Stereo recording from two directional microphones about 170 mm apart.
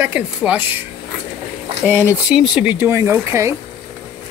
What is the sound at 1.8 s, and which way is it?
Speech, 10° right (ahead or behind).